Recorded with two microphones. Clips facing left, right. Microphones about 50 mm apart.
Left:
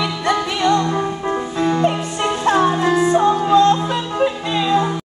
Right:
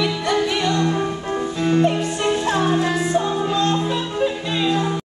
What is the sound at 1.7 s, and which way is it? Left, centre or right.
Music, left.